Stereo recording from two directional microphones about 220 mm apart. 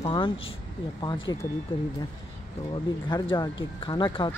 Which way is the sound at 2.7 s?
20° left (ahead or behind).